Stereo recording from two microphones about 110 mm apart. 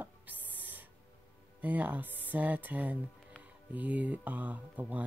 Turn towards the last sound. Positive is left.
turn(degrees=-15)  # may be behind; listen again after turning